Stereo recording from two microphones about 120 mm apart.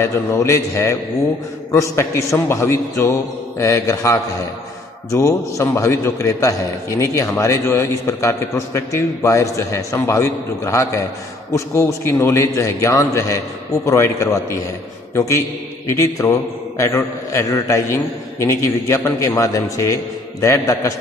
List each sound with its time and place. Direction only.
0.0 s a man's voice: 25° left (ahead or behind)